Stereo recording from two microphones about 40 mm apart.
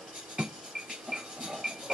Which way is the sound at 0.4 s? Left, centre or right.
Centre.